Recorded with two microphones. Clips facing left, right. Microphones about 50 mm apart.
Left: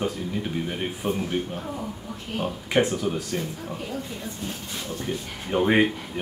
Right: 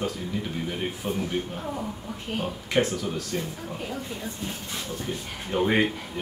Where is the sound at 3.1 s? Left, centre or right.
Centre.